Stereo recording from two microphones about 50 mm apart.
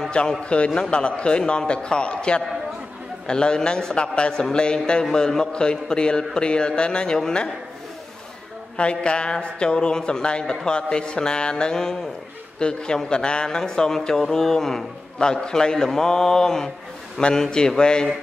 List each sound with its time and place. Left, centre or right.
0.4 s a man's voice: left
8.7 s speech: left